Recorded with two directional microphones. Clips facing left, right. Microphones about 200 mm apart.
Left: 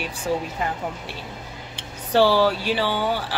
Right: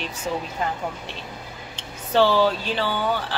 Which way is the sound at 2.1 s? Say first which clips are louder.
Left 1 dB; 10° left (ahead or behind).